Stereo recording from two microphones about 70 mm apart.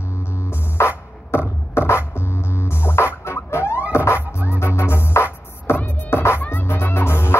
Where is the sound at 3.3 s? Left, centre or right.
Left.